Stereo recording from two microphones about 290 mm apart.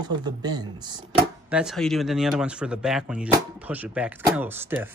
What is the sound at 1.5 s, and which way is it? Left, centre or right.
Speech, centre.